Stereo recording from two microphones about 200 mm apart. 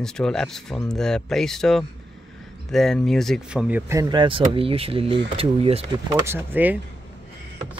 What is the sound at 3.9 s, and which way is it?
Speech, 20° right (ahead or behind).